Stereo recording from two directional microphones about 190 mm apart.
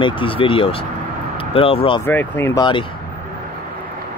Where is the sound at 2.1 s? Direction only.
10° left (ahead or behind).